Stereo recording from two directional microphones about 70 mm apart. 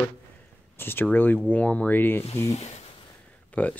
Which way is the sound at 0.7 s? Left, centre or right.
Left.